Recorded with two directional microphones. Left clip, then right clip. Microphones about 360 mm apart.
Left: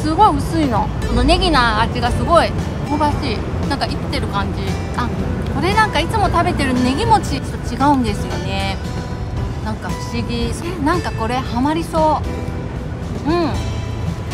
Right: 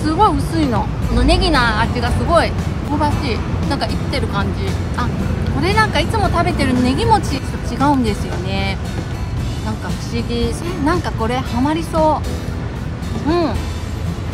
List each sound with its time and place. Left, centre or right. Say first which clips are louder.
0.0 s speech: left 1 dB; centre
5.6 s speech: even; centre
10.1 s speech: right 5 dB; centre
13.3 s speech: right 1 dB; centre